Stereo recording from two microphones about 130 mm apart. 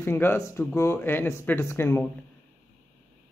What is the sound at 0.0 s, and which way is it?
Speech, 20° left (ahead or behind).